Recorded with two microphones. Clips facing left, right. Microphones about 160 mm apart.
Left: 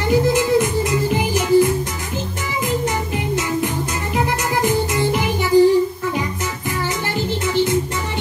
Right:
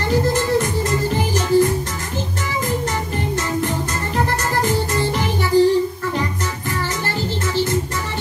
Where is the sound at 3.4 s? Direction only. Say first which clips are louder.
Even; 10° left (ahead or behind).